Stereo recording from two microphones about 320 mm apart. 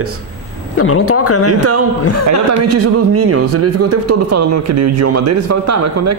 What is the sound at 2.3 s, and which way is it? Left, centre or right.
Speech, right.